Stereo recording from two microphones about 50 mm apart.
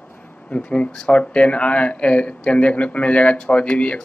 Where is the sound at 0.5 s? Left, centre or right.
Left.